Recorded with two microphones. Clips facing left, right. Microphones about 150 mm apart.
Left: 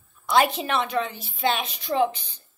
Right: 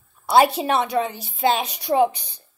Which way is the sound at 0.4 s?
15° right (ahead or behind).